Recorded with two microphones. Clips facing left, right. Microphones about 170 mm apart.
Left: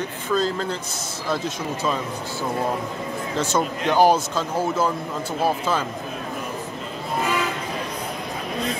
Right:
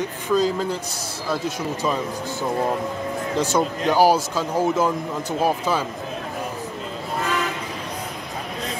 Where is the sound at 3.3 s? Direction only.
15° right (ahead or behind).